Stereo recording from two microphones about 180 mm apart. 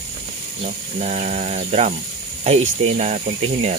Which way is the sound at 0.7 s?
40° right (ahead or behind).